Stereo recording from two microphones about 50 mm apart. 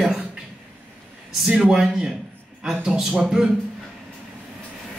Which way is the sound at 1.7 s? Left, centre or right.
Centre.